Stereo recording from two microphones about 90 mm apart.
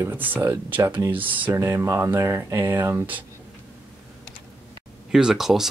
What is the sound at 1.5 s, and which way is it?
Speech, 30° right (ahead or behind).